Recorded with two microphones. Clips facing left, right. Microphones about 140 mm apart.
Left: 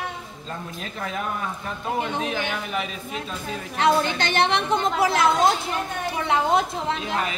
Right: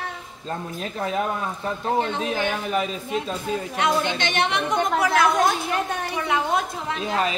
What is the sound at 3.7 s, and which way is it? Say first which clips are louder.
A woman's voice: left 4 dB; 30° left (ahead or behind).